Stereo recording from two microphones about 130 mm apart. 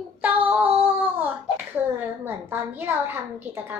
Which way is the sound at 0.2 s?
15° right (ahead or behind).